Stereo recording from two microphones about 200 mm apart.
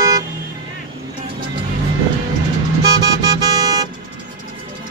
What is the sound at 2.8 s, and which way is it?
Vehicle, 20° right (ahead or behind).